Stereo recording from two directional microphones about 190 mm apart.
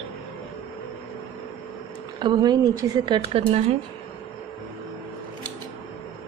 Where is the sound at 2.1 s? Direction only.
25° right (ahead or behind).